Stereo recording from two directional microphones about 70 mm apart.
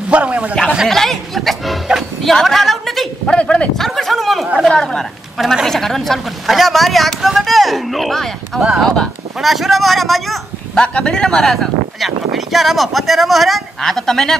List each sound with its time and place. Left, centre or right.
0.1 s a man's voice: centre
0.8 s a woman's voice: centre
1.9 s music: centre
2.3 s a woman's voice: centre
3.3 s speech: centre
3.7 s a sound: centre
4.6 s a woman's voice: centre
9.4 s speech: centre
10.8 s a woman's voice: centre